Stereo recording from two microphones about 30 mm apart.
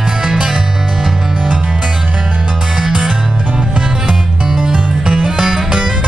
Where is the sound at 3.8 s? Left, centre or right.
Right.